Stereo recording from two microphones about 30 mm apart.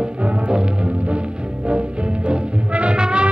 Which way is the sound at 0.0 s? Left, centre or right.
Right.